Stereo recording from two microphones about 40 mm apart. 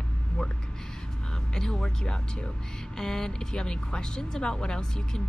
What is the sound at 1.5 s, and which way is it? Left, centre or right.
Speech, centre.